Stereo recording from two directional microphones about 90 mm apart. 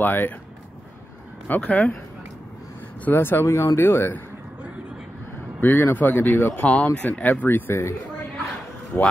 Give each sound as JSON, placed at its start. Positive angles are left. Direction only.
{"t": 0.0, "sound": "speech", "side_deg": 20}
{"t": 1.5, "sound": "speech", "side_deg": 15}
{"t": 3.1, "sound": "speech", "side_deg": 25}
{"t": 5.6, "sound": "speech", "side_deg": 25}
{"t": 6.5, "sound": "speech", "side_deg": 15}
{"t": 8.9, "sound": "speech", "side_deg": 20}